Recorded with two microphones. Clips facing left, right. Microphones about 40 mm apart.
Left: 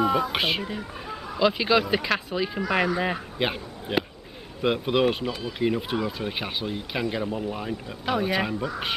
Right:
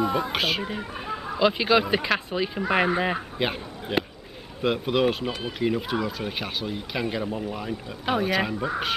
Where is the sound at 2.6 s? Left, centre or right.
Centre.